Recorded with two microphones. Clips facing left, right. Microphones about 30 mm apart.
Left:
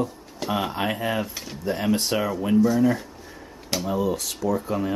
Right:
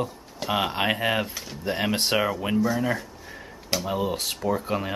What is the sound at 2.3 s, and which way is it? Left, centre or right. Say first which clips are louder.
Speech: left 3 dB; right.